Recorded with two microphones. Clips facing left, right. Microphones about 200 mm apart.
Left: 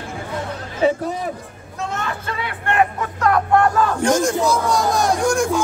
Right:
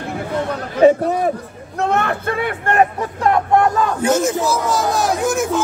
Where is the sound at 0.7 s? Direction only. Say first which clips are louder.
Right 7 dB; 60° right (ahead or behind); by 3.3 s 30° right (ahead or behind).